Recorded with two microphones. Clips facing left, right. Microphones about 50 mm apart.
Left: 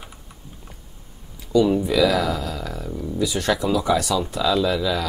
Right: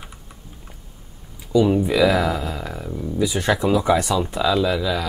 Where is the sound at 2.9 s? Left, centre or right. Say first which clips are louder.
Right 2 dB; centre.